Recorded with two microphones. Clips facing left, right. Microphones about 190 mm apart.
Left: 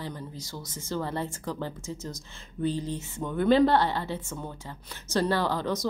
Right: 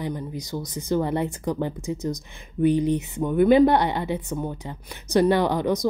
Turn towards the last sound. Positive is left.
turn(degrees=-15)  # may be behind; listen again after turning